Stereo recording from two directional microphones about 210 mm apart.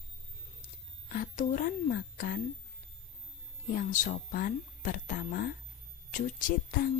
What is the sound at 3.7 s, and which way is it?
Speech, 40° left (ahead or behind).